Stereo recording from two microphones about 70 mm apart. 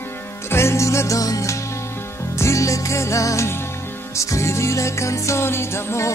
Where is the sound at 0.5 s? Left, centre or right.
Left.